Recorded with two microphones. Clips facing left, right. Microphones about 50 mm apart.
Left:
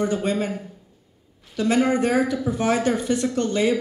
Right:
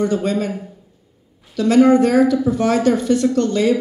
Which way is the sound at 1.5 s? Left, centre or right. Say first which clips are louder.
Right 8 dB; centre.